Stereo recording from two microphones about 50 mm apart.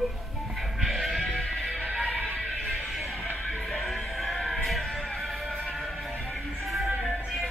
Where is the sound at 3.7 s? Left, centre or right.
Centre.